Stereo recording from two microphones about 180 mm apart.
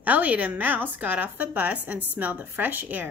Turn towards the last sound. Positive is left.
turn(degrees=-10)  # may be behind; listen again after turning